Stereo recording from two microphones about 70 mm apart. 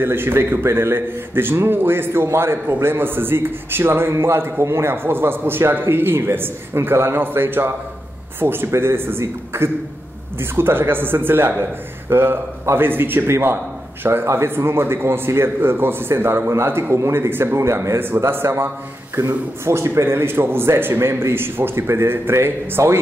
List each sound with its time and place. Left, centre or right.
0.0 s a man's voice: right